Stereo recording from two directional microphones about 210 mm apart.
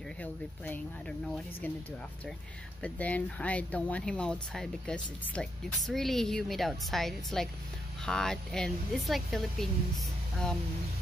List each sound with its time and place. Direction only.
0.2 s speech: 5° left (ahead or behind)
2.8 s speech: 5° left (ahead or behind)